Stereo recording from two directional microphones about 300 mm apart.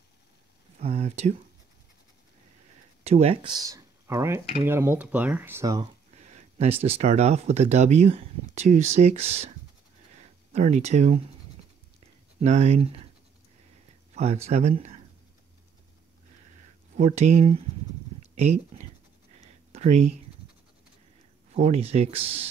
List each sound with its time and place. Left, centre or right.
0.7 s a sound: right
3.0 s speech: right
6.1 s speech: right
12.4 s speech: right
14.1 s speech: right
16.9 s speech: right
19.3 s a sound: right
21.5 s speech: right